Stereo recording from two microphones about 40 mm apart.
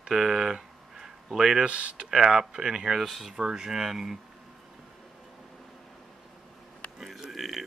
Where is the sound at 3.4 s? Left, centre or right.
Centre.